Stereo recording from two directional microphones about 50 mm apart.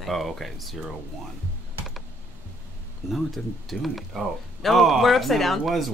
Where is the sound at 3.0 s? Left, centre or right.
Centre.